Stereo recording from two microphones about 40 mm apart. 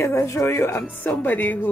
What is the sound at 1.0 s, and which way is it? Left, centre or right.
Speech, left.